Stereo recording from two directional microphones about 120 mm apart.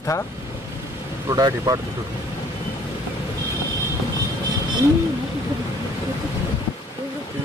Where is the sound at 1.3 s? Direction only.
30° right (ahead or behind).